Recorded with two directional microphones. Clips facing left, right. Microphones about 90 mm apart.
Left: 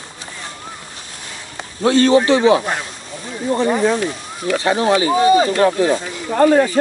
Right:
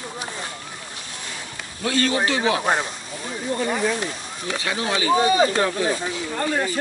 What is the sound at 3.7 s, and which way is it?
Speech, 40° left (ahead or behind).